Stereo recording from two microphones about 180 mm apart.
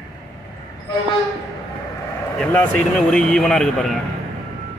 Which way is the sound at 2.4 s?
5° left (ahead or behind).